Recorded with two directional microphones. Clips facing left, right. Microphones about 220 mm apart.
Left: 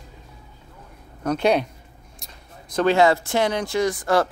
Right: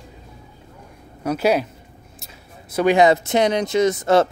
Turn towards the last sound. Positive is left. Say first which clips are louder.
# right 4 dB
turn(degrees=-25)  # may be behind; listen again after turning